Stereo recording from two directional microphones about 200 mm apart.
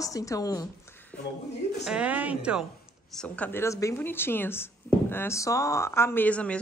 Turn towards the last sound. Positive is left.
turn(degrees=5)  # may be behind; listen again after turning